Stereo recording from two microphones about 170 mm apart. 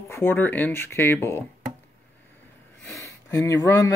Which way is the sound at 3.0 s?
15° left (ahead or behind).